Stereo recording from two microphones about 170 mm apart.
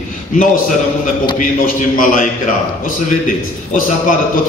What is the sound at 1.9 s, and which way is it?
Speech, 55° left (ahead or behind).